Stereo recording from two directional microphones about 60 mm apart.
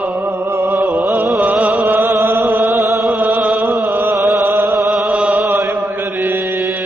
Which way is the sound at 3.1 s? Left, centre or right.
Right.